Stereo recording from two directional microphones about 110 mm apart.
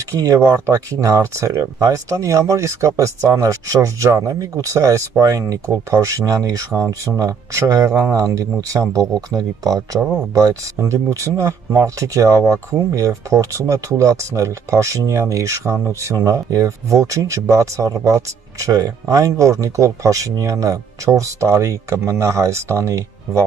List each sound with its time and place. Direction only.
0.5 s speech: 30° right (ahead or behind)